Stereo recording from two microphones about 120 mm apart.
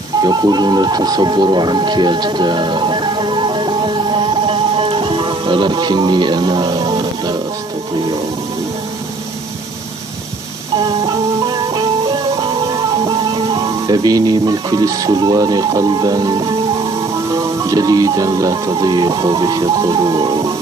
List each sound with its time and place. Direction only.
0.2 s music: 35° right (ahead or behind)
13.8 s music: 35° right (ahead or behind)